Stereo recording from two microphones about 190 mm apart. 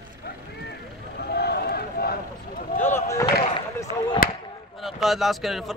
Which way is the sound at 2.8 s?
15° left (ahead or behind).